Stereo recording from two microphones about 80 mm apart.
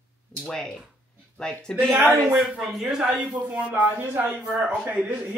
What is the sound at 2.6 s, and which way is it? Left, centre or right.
Speech, centre.